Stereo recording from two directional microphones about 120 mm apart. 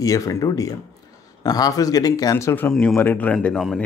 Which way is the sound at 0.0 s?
30° left (ahead or behind).